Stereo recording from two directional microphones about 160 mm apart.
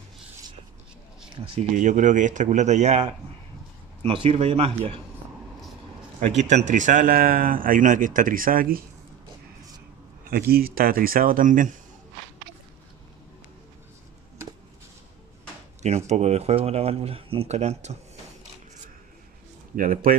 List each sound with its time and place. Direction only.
1.3 s speech: 35° right (ahead or behind)
1.8 s speech: 50° right (ahead or behind)
6.1 s speech: 45° right (ahead or behind); by 8.8 s 65° right (ahead or behind)
10.5 s speech: 70° right (ahead or behind)
16.1 s speech: 45° right (ahead or behind)
19.7 s speech: 60° right (ahead or behind)